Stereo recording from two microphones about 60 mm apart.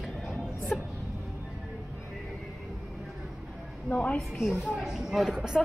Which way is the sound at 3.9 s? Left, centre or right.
Centre.